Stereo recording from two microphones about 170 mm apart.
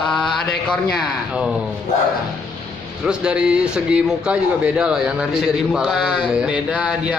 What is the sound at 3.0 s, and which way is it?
A man's voice, 5° right (ahead or behind).